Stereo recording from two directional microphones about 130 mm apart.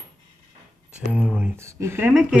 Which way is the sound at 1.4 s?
20° right (ahead or behind).